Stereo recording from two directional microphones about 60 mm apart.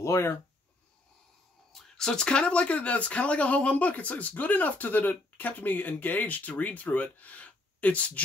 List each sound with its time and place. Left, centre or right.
0.0 s speech: left
1.7 s speech: centre; by 8.2 s left